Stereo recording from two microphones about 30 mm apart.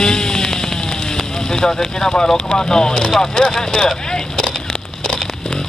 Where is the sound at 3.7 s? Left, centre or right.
Left.